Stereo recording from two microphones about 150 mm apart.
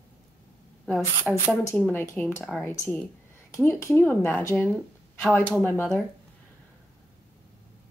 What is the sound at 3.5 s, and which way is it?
Speech, 15° left (ahead or behind).